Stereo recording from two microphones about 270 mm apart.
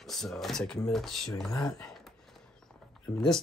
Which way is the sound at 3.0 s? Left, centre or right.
Centre.